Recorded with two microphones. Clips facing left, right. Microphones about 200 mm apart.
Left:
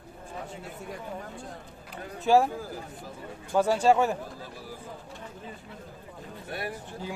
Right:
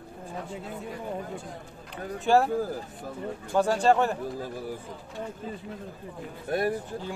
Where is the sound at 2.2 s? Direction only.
10° left (ahead or behind).